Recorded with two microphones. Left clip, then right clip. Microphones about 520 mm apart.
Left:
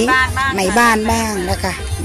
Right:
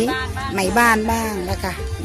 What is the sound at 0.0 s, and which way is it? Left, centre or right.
Speech, right.